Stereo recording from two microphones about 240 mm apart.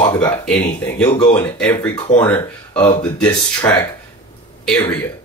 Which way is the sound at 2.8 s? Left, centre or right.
Centre.